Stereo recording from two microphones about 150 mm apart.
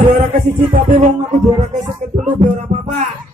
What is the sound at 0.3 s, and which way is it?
Music, 65° right (ahead or behind).